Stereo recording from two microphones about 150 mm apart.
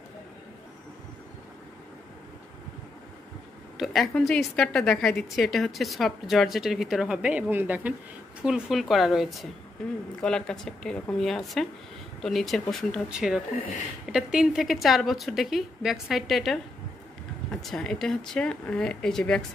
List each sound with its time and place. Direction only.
3.7 s a woman's voice: centre (ahead or behind)
17.6 s a woman's voice: centre (ahead or behind)